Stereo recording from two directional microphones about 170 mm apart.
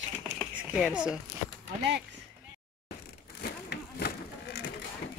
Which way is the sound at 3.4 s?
70° left (ahead or behind).